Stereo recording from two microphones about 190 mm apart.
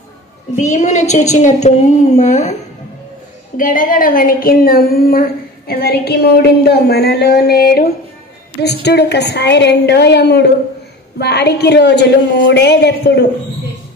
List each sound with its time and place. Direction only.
0.6 s a woman's voice: 40° left (ahead or behind)
3.5 s a woman's voice: 45° left (ahead or behind)